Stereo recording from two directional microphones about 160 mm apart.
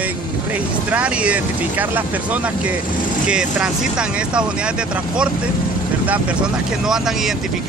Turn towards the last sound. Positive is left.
turn(degrees=-5)  # may be behind; listen again after turning